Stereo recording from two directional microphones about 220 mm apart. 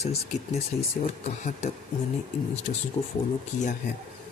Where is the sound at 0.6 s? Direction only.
30° left (ahead or behind).